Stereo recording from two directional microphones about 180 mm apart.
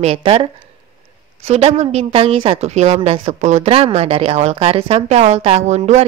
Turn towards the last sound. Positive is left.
turn(degrees=-40)  # may be behind; listen again after turning